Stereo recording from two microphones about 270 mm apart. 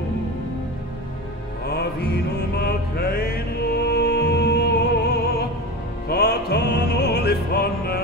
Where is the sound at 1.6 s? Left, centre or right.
Left.